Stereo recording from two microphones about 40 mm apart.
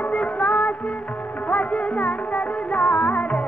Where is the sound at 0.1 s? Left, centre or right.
Left.